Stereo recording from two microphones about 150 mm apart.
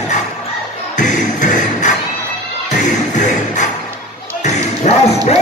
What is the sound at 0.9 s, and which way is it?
Music, 55° left (ahead or behind).